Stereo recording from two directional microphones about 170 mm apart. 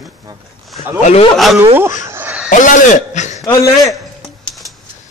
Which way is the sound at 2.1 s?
10° right (ahead or behind).